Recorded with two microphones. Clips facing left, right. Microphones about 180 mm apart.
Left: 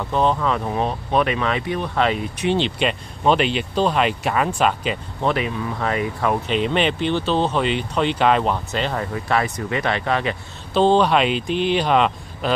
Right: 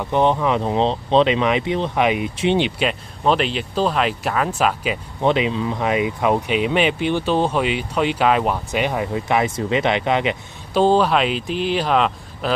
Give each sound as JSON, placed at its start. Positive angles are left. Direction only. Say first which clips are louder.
{"t": 0.0, "sound": "speech", "louder": "right 2 dB", "side_deg": -20}
{"t": 2.6, "sound": "speech", "louder": "right 1 dB", "side_deg": -5}
{"t": 5.2, "sound": "speech", "louder": "right 4 dB", "side_deg": -20}
{"t": 10.8, "sound": "speech", "louder": "even", "side_deg": -5}